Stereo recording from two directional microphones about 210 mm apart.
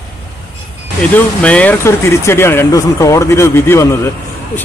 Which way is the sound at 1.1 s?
5° left (ahead or behind).